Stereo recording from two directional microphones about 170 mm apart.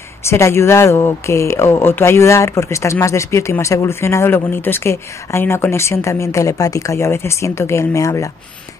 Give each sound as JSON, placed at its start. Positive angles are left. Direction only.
{"t": 0.2, "sound": "speech", "side_deg": 15}